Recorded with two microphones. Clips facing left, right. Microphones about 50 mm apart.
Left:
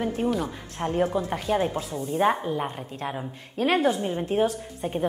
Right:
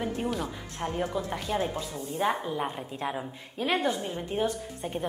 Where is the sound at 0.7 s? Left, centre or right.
Left.